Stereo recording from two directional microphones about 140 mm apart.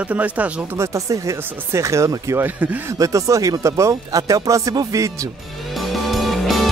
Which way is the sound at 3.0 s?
25° right (ahead or behind).